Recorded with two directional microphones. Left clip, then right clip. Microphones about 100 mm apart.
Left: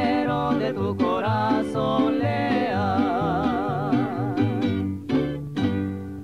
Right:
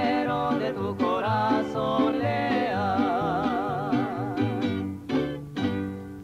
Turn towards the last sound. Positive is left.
turn(degrees=-30)  # may be behind; listen again after turning